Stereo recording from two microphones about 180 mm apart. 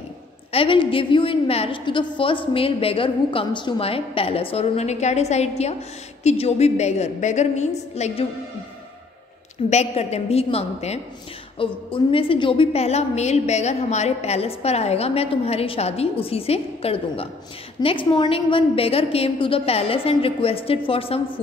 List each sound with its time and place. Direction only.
0.5 s a woman's voice: 30° left (ahead or behind)
9.7 s a woman's voice: 35° left (ahead or behind)